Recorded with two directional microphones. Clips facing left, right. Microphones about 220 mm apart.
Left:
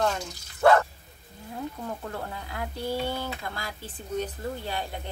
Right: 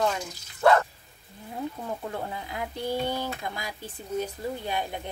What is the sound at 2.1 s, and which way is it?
Speech, 20° right (ahead or behind).